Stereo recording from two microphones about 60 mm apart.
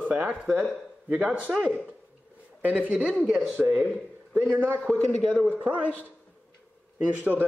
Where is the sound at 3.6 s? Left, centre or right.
Right.